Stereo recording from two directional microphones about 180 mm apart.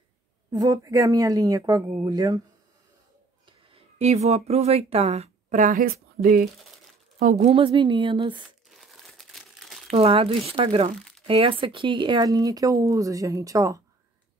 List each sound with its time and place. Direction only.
0.5 s speech: 20° right (ahead or behind)
3.4 s speech: 35° right (ahead or behind); by 6.4 s 55° right (ahead or behind)
7.2 s speech: 35° right (ahead or behind)
8.6 s crumpling: centre (ahead or behind)
9.9 s speech: 30° right (ahead or behind)